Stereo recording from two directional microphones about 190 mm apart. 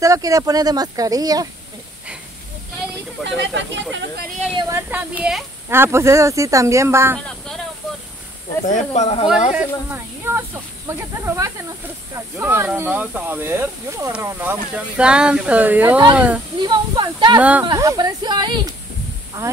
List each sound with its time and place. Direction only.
0.0 s speech: 15° right (ahead or behind)
3.3 s speech: 70° right (ahead or behind)
4.6 s speech: 15° right (ahead or behind)
7.2 s a sound: centre (ahead or behind)
8.6 s speech: 40° left (ahead or behind)
9.5 s speech: 10° right (ahead or behind)
16.5 s speech: 25° right (ahead or behind)
17.4 s speech: 10° right (ahead or behind)
17.6 s speech: 20° right (ahead or behind)